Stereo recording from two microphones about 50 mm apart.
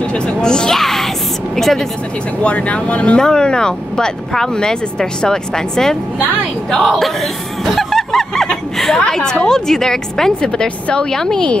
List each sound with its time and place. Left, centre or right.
0.0 s a sound: centre
1.6 s speech: centre
2.4 s speech: left; by 5.9 s centre
6.7 s a sound: centre
8.7 s chatter: centre
9.1 s speech: centre
10.5 s speech: centre